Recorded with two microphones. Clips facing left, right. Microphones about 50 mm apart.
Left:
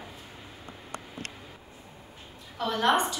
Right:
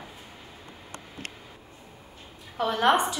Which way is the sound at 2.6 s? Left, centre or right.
Centre.